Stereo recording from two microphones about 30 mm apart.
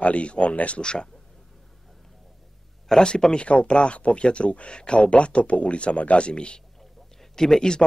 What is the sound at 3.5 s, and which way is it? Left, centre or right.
Speech, left.